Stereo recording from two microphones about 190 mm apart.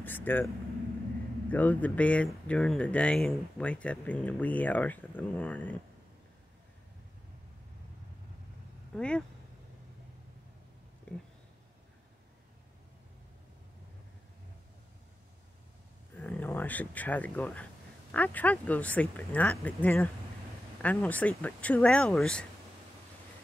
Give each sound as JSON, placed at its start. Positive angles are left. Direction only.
{"t": 0.0, "sound": "vehicle", "side_deg": 10}
{"t": 1.5, "sound": "speech", "side_deg": 10}
{"t": 8.9, "sound": "speech", "side_deg": 5}
{"t": 11.1, "sound": "speech", "side_deg": 5}
{"t": 16.2, "sound": "speech", "side_deg": 10}